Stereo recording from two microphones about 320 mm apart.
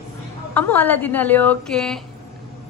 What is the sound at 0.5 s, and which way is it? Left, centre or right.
Speech, centre.